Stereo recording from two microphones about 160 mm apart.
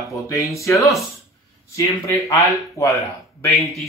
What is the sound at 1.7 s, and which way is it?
Speech, 20° left (ahead or behind).